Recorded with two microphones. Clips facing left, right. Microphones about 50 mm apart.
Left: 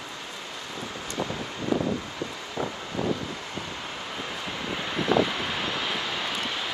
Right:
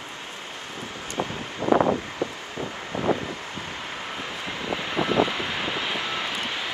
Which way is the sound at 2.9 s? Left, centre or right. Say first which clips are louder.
Right 2 dB; right.